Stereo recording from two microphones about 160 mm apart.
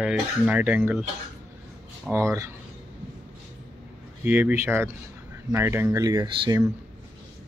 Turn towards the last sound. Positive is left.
turn(degrees=-25)  # may be behind; listen again after turning